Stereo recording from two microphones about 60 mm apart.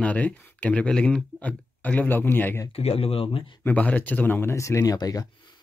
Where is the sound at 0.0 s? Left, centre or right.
Left.